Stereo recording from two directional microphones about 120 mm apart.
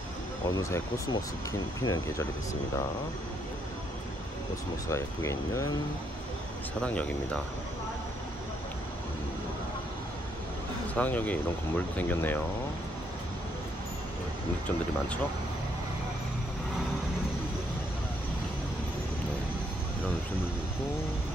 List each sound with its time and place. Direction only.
0.6 s speech: 25° left (ahead or behind)
4.8 s speech: 25° left (ahead or behind)
6.8 s speech: 10° left (ahead or behind)
11.0 s speech: 15° left (ahead or behind)